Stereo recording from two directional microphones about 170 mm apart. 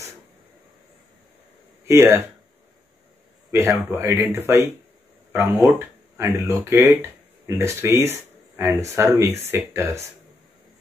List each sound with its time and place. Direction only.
1.9 s speech: 15° right (ahead or behind)
3.5 s speech: 15° right (ahead or behind)